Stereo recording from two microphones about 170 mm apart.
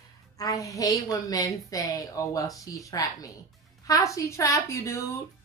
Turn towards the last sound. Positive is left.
turn(degrees=15)  # may be behind; listen again after turning